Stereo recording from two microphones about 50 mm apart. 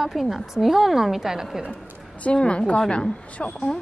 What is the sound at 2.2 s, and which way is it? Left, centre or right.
A woman's voice, left.